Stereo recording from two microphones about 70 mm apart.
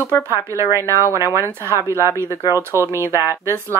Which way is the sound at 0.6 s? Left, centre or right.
Right.